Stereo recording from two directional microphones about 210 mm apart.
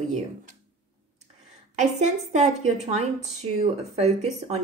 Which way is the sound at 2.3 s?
30° right (ahead or behind).